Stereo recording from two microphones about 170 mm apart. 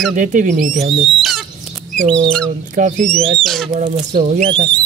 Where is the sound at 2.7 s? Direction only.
50° right (ahead or behind).